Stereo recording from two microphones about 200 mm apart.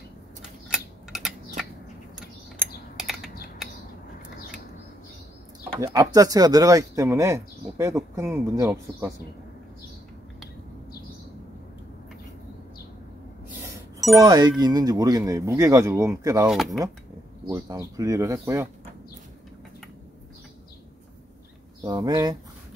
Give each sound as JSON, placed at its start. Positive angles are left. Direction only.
{"t": 0.7, "sound": "typing", "side_deg": 0}
{"t": 3.0, "sound": "typing", "side_deg": 0}
{"t": 5.9, "sound": "speech", "side_deg": -15}
{"t": 14.2, "sound": "speech", "side_deg": -20}
{"t": 16.4, "sound": "speech", "side_deg": 0}
{"t": 17.5, "sound": "speech", "side_deg": -15}
{"t": 21.8, "sound": "speech", "side_deg": -20}